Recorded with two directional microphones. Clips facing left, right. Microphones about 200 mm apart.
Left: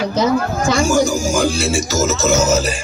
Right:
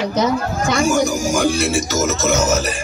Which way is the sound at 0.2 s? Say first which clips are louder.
Left 3 dB; 30° left (ahead or behind).